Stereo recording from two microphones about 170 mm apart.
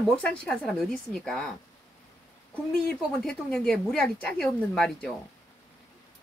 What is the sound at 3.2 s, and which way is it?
Speech, 5° left (ahead or behind).